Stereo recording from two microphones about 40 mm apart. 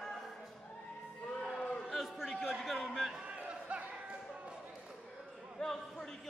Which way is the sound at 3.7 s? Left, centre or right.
Right.